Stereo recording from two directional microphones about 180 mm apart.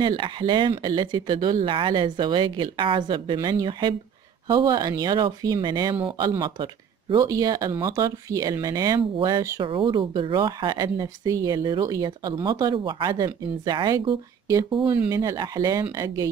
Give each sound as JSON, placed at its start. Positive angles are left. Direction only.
{"t": 0.0, "sound": "speech", "side_deg": -25}